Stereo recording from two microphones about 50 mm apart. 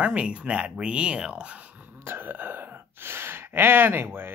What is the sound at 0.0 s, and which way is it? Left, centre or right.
Speech, right.